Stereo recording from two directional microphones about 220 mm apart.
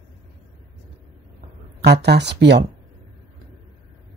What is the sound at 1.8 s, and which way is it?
Speech, 50° right (ahead or behind).